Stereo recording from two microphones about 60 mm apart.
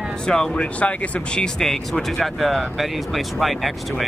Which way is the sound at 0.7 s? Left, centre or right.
Left.